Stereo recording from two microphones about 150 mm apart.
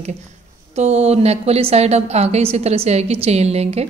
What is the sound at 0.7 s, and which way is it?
A woman's voice, 45° right (ahead or behind).